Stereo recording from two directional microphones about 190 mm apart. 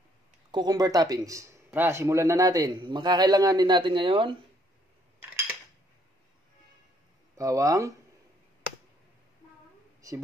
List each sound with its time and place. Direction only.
0.5 s speech: 20° right (ahead or behind)
7.3 s speech: 15° right (ahead or behind)
10.0 s speech: 15° right (ahead or behind)